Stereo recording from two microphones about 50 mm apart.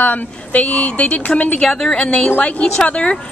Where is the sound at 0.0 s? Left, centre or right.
Left.